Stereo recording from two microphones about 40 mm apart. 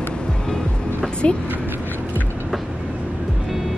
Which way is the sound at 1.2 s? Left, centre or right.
Left.